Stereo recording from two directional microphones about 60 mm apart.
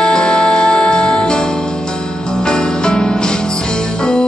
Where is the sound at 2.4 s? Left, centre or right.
Centre.